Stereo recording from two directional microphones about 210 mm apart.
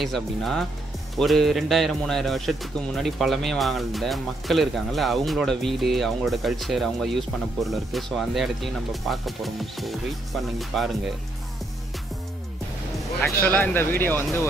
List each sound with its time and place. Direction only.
0.0 s speech: centre (ahead or behind)
13.2 s speech: 10° left (ahead or behind)